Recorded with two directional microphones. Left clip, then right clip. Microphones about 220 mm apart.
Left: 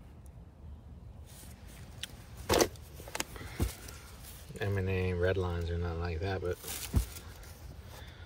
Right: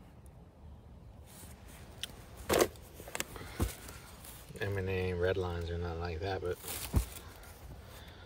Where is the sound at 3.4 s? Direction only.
15° right (ahead or behind).